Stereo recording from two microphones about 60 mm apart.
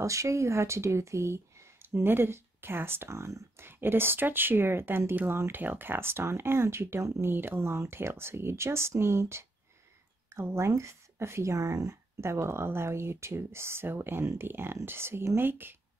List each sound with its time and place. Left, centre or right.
0.0 s speech: right
3.6 s speech: right